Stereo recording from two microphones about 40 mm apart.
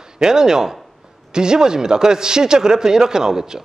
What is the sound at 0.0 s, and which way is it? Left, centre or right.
Speech, centre.